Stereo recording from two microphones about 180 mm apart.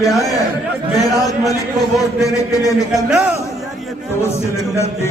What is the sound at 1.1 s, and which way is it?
A man's voice, 20° left (ahead or behind).